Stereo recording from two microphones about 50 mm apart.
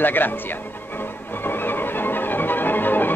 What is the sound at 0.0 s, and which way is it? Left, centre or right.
Speech, left.